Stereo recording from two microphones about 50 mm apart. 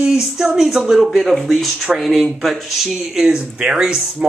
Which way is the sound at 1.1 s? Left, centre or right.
Centre.